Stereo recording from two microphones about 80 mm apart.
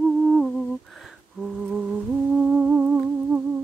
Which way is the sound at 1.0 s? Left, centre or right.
Centre.